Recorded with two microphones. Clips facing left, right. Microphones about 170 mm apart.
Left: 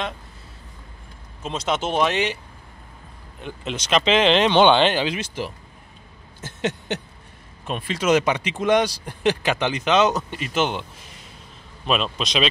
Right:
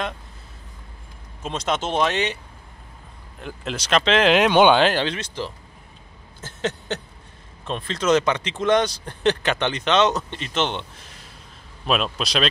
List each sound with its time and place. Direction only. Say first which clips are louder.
1.4 s speech: even; 5° left (ahead or behind)
3.3 s speech: even; centre (ahead or behind)
5.1 s speech: left 1 dB; 15° left (ahead or behind)
6.4 s a sound: left 1 dB; 15° left (ahead or behind)
7.6 s speech: even; 10° left (ahead or behind)